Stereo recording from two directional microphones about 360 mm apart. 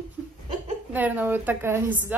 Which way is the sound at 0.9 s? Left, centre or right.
Centre.